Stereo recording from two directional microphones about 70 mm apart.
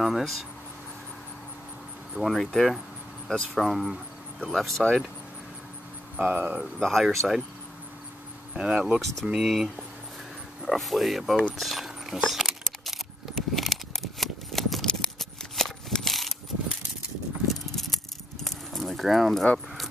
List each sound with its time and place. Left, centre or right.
0.0 s speech: centre
2.1 s speech: centre
6.2 s speech: right
6.8 s speech: centre
8.5 s speech: centre
11.5 s keys jangling: centre
17.5 s keys jangling: centre